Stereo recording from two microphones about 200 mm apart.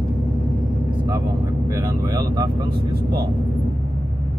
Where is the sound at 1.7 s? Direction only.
20° right (ahead or behind).